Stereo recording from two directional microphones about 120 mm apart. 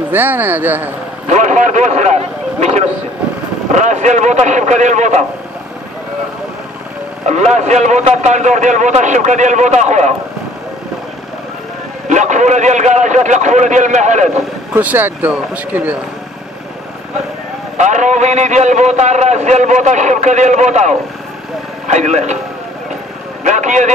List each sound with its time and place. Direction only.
0.1 s speech: 15° right (ahead or behind)
1.3 s a man's voice: 90° right; by 2.9 s 65° right (ahead or behind)
3.7 s a man's voice: 80° right
7.2 s a man's voice: 75° right (ahead or behind)
12.1 s a man's voice: 90° right
14.7 s speech: 15° right (ahead or behind)
17.7 s a man's voice: 90° right
23.4 s a man's voice: 90° right